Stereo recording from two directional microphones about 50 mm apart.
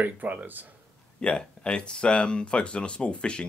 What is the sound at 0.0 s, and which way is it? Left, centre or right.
Speech, right.